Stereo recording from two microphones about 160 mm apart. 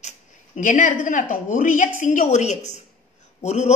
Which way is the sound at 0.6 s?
55° left (ahead or behind).